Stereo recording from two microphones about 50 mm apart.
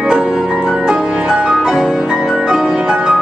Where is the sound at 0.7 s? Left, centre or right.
Centre.